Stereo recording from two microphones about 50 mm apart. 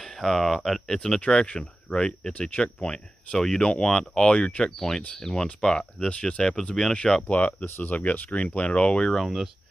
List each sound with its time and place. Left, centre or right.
0.0 s speech: centre
1.2 s speech: centre
7.2 s speech: left